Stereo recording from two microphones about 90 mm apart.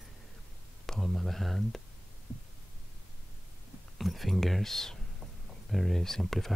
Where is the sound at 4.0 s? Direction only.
Centre (ahead or behind).